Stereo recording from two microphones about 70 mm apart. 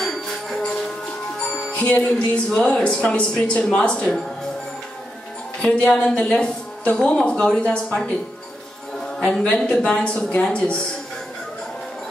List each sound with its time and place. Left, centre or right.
0.0 s music: centre
2.1 s a woman's voice: centre
5.6 s a woman's voice: centre
9.2 s a woman's voice: centre